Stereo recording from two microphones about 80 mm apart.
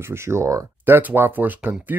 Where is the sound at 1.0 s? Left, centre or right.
Right.